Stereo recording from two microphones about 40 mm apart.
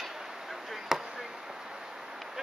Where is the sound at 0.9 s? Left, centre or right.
Centre.